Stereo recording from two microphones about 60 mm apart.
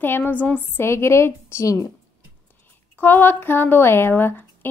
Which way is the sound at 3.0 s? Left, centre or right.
Left.